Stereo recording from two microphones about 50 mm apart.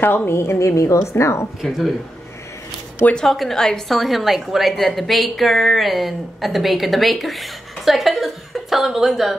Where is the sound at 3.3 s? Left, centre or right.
Centre.